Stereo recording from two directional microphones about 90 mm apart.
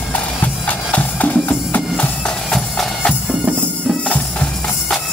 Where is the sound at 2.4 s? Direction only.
5° left (ahead or behind).